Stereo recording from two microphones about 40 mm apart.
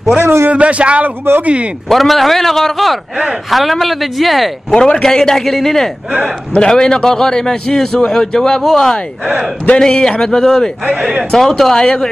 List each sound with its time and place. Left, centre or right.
0.2 s a man's voice: right
0.5 s a man's voice: right
1.9 s speech: centre
4.6 s a man's voice: left